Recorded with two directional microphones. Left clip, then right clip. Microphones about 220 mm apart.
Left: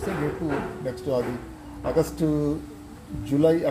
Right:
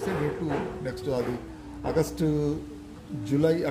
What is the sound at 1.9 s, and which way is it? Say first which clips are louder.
A man's voice: left 3 dB; 15° right (ahead or behind).